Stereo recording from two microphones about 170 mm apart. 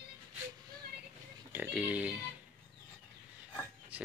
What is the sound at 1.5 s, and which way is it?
Speech, 10° right (ahead or behind).